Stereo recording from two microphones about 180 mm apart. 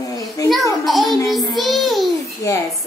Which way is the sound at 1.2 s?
Centre (ahead or behind).